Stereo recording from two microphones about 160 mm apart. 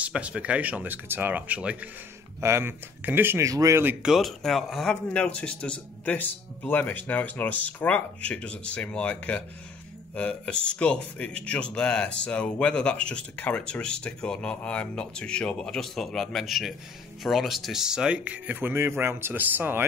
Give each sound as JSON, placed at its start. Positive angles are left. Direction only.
{"t": 0.0, "sound": "speech", "side_deg": -5}
{"t": 4.0, "sound": "speech", "side_deg": 0}